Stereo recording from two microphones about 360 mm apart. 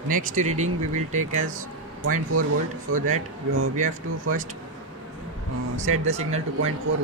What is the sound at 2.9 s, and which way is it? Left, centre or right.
Speech, right.